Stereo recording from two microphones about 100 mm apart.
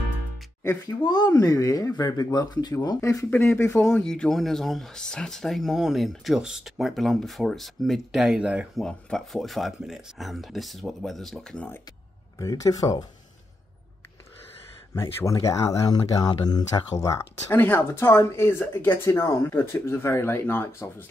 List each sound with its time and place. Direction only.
1.0 s speech: 45° left (ahead or behind)
3.3 s speech: 20° left (ahead or behind)
4.0 s speech: 5° left (ahead or behind)
8.7 s speech: 5° left (ahead or behind)
12.4 s speech: 35° left (ahead or behind)
15.0 s speech: 30° left (ahead or behind)
17.5 s speech: 20° left (ahead or behind)